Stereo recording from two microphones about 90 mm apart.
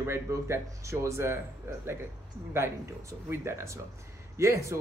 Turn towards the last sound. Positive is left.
turn(degrees=-30)  # may be behind; listen again after turning